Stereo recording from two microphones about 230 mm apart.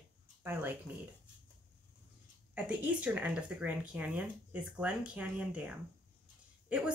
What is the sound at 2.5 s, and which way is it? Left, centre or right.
Speech, centre.